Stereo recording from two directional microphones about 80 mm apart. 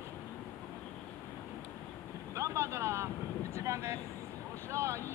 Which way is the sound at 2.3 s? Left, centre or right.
Right.